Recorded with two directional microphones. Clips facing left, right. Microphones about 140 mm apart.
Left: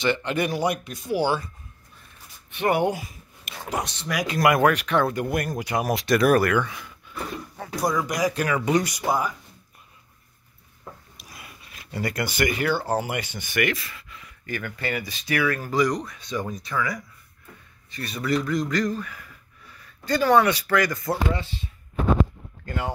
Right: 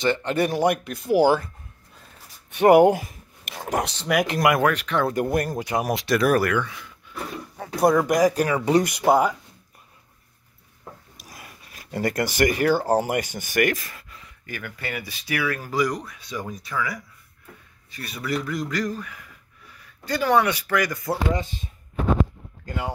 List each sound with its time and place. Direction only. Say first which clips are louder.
0.0 s speech: right 2 dB; 40° right (ahead or behind); by 1.5 s 55° right (ahead or behind)
2.9 s speech: right 6 dB; 50° right (ahead or behind)
4.4 s speech: left 3 dB; 5° right (ahead or behind)
4.6 s speech: left 2 dB; 10° left (ahead or behind)
5.1 s speech: right 3 dB; 35° right (ahead or behind); by 6.0 s 15° right (ahead or behind)
6.0 s speech: left 2 dB; centre (ahead or behind)
7.7 s speech: right 7 dB; 55° right (ahead or behind)
8.5 s speech: right 2 dB; 30° right (ahead or behind)
8.8 s speech: right 6 dB; 60° right (ahead or behind)
11.2 s speech: right 1 dB; 40° right (ahead or behind)
14.4 s speech: left 4 dB; 10° right (ahead or behind)